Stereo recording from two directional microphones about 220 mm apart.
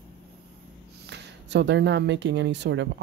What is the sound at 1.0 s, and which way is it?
Speech, 50° right (ahead or behind).